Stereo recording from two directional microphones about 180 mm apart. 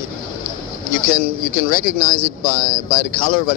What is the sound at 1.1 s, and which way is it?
Speech, 50° left (ahead or behind).